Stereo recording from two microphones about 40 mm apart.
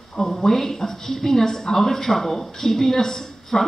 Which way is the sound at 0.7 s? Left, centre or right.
Centre.